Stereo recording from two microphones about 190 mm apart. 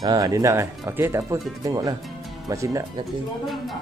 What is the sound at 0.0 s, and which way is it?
Speech, 20° right (ahead or behind).